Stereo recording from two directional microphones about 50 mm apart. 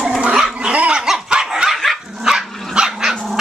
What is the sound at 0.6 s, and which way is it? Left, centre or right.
Dog, right.